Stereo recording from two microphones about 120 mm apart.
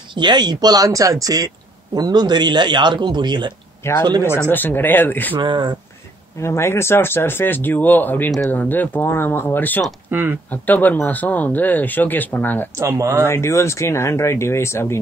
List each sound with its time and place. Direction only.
0.1 s a man's voice: 40° right (ahead or behind)
3.8 s speech: 20° left (ahead or behind)
5.3 s a man's voice: 40° right (ahead or behind)
6.4 s speech: 20° left (ahead or behind)
10.1 s speech: 20° right (ahead or behind)
10.5 s speech: 15° left (ahead or behind)
12.7 s speech: 25° right (ahead or behind)
13.2 s speech: 20° left (ahead or behind)